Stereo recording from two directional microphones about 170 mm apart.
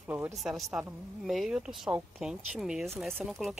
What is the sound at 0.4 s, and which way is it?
Speech, centre (ahead or behind).